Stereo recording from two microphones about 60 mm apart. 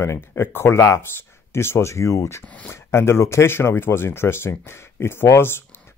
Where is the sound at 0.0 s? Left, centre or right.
Left.